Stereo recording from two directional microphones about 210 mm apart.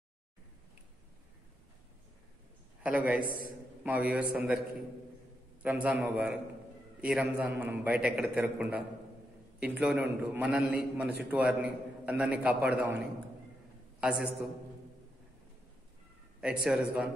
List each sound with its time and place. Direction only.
2.8 s a man's voice: 5° right (ahead or behind)
5.6 s a man's voice: 5° right (ahead or behind)
16.3 s a man's voice: 5° right (ahead or behind)